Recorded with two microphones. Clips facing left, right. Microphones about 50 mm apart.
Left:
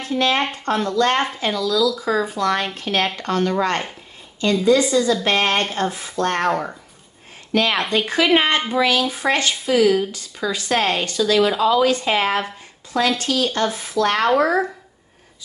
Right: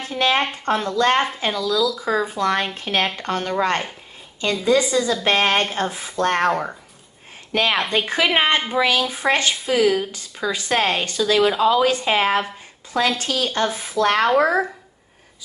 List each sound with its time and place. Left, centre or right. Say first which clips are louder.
0.0 s a sound: even; right
0.7 s a woman's voice: even; centre
7.5 s a woman's voice: left 1 dB; right